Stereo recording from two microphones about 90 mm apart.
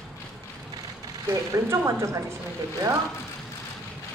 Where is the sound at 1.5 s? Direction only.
35° right (ahead or behind).